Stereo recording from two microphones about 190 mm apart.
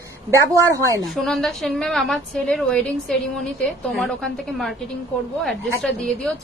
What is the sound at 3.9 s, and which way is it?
A woman's voice, centre (ahead or behind).